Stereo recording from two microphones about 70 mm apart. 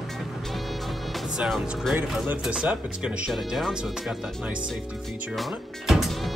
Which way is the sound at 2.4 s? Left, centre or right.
Centre.